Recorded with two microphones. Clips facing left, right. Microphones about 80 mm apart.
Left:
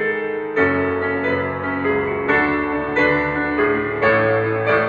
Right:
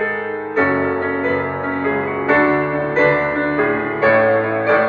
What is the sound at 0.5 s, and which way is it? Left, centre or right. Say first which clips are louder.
Music: right 2 dB; centre.